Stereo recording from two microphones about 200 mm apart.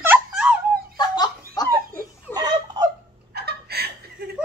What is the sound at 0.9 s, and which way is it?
Chicken, 20° left (ahead or behind).